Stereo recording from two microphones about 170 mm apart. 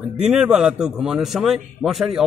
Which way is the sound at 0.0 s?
5° right (ahead or behind).